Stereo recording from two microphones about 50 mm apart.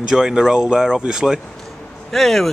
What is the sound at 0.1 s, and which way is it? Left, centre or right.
Speech, centre.